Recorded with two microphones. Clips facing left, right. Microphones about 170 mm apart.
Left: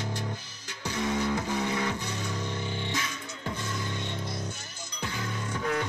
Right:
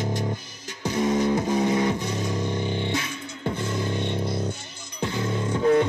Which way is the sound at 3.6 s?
30° right (ahead or behind).